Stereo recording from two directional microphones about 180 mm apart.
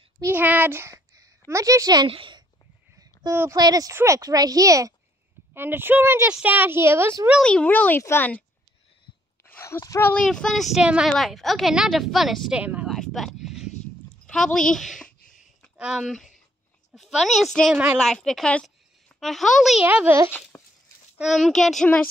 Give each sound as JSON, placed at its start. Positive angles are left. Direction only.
{"t": 0.2, "sound": "a sound", "side_deg": -10}
{"t": 1.5, "sound": "speech", "side_deg": -20}
{"t": 3.0, "sound": "a woman's voice", "side_deg": -15}
{"t": 7.3, "sound": "a child's voice", "side_deg": 5}
{"t": 9.5, "sound": "speech", "side_deg": 15}
{"t": 10.2, "sound": "a woman's voice", "side_deg": 5}
{"t": 20.2, "sound": "speech", "side_deg": 10}